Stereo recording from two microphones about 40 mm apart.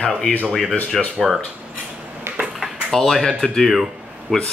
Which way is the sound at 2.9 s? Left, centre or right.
Centre.